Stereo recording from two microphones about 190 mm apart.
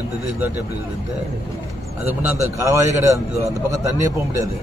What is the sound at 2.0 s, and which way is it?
A man's voice, 10° right (ahead or behind).